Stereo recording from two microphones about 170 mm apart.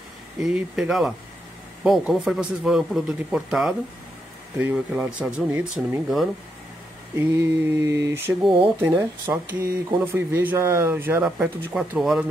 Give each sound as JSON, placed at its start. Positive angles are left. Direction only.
{"t": 0.4, "sound": "speech", "side_deg": -5}
{"t": 7.2, "sound": "speech", "side_deg": -15}